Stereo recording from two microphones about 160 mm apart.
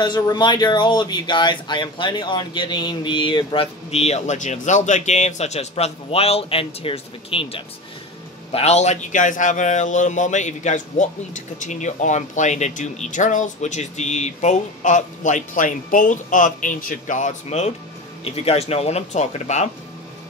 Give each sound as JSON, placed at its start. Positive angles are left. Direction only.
{"t": 0.0, "sound": "a man's voice", "side_deg": 25}